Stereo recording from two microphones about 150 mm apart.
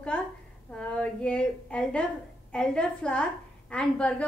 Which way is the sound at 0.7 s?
5° left (ahead or behind).